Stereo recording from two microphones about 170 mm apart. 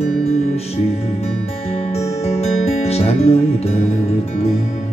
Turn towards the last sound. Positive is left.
turn(degrees=35)  # may be behind; listen again after turning